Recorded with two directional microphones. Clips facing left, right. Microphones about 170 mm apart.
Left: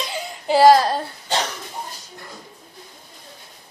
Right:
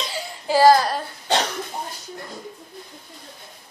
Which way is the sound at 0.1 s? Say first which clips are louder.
Left 2 dB; 20° left (ahead or behind).